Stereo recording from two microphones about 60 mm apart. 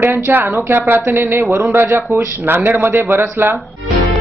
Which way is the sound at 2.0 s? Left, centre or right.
Right.